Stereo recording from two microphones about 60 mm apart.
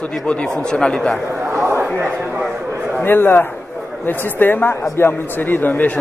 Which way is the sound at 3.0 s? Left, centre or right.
Left.